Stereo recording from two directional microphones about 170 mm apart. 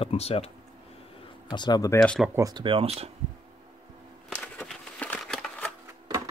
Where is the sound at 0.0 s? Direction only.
35° left (ahead or behind).